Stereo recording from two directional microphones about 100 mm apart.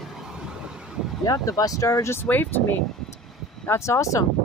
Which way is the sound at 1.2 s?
35° left (ahead or behind).